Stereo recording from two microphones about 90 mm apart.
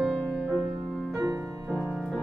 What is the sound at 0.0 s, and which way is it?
Music, 10° right (ahead or behind).